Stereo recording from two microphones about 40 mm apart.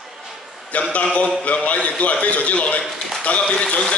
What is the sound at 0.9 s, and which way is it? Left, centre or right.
A man's voice, left.